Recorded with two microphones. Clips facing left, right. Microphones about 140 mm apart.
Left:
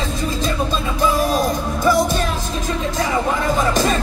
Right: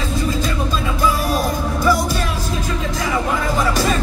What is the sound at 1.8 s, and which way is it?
Music, 20° left (ahead or behind).